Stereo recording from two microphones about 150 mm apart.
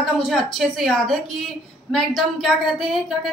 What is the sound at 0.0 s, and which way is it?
A woman's voice, centre (ahead or behind).